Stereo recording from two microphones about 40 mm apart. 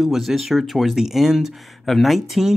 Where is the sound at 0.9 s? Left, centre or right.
Centre.